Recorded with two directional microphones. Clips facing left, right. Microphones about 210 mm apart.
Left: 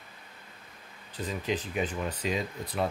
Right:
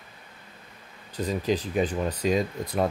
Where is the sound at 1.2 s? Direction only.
40° right (ahead or behind).